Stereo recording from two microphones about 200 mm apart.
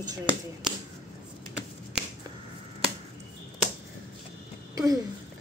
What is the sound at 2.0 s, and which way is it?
Finger snapping, 5° right (ahead or behind).